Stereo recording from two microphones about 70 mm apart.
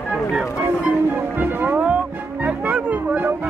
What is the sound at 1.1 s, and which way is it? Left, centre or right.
Music, right.